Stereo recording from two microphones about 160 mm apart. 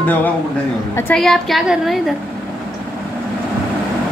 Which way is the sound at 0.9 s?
10° left (ahead or behind).